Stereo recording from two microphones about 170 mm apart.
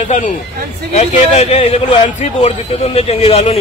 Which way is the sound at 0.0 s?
40° left (ahead or behind).